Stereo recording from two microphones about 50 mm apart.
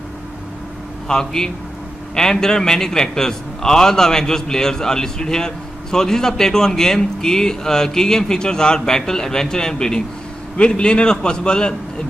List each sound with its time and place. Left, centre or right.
1.0 s a man's voice: centre